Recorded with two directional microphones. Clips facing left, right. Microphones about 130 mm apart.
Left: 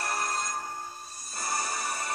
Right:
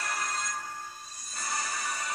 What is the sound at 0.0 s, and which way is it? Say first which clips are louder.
Music: left 3 dB; 35° left (ahead or behind).